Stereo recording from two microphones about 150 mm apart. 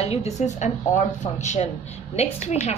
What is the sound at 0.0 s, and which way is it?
A woman's voice, 45° left (ahead or behind).